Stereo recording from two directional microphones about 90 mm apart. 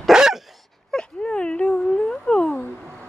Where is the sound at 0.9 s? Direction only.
10° left (ahead or behind).